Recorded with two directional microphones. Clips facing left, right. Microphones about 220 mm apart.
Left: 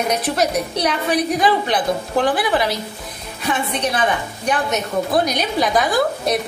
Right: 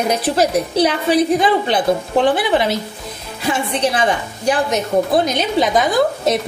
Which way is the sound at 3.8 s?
30° right (ahead or behind).